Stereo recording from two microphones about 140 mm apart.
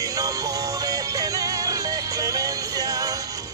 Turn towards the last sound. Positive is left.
turn(degrees=-25)  # may be behind; listen again after turning